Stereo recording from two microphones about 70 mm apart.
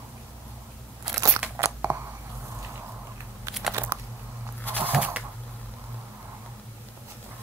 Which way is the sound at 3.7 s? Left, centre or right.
Right.